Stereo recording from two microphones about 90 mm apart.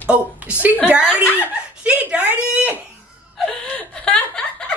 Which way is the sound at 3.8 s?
10° left (ahead or behind).